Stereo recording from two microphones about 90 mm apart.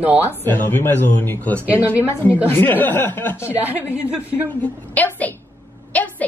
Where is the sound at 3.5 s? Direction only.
15° right (ahead or behind).